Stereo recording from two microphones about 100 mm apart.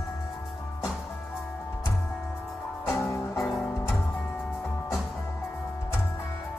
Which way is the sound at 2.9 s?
30° left (ahead or behind).